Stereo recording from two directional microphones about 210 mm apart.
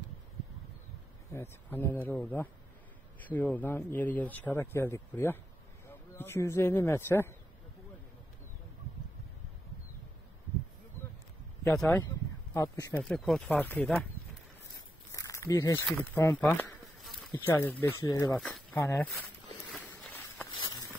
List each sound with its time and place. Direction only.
1.3 s speech: 10° left (ahead or behind)
12.5 s speech: 15° left (ahead or behind)
13.1 s speech: centre (ahead or behind)
15.1 s walk: 15° left (ahead or behind)
15.9 s speech: 10° left (ahead or behind)
18.3 s speech: centre (ahead or behind)
19.7 s walk: 5° left (ahead or behind)
20.5 s a sound: 20° left (ahead or behind)